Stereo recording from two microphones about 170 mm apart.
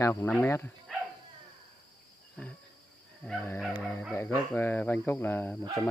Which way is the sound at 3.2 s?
5° left (ahead or behind).